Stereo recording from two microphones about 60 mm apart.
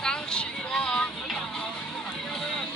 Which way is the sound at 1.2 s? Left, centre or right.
Centre.